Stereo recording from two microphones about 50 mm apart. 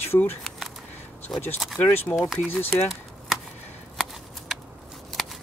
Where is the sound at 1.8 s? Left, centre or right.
Left.